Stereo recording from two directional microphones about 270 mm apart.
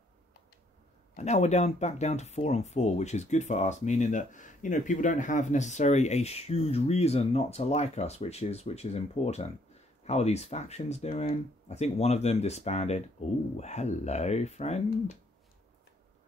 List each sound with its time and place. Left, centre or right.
1.1 s speech: left